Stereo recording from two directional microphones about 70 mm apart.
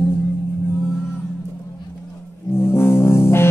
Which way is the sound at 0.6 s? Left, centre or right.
Left.